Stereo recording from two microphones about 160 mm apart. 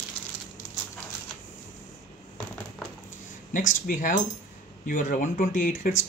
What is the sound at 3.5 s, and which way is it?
Speech, 55° left (ahead or behind).